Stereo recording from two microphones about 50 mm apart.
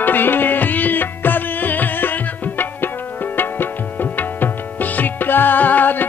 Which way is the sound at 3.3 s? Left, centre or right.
Left.